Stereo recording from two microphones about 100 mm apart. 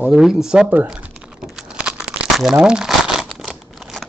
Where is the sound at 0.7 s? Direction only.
20° right (ahead or behind).